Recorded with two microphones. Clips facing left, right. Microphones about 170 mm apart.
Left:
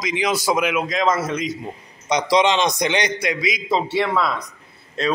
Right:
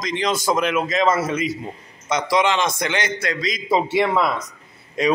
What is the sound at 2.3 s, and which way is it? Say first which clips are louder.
A man's voice: left 2 dB; 20° left (ahead or behind).